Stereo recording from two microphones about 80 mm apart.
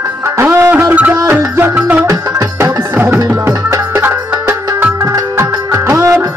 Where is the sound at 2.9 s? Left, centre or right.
Right.